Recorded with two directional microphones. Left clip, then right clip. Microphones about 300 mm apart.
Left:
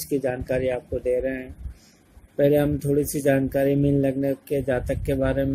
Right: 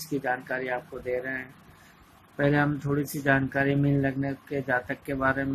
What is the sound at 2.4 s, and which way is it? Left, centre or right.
Speech, centre.